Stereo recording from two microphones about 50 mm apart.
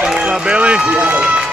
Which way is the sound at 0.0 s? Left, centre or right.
Right.